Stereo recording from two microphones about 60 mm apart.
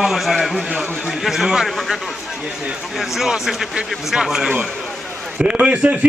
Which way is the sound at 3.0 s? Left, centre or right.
Centre.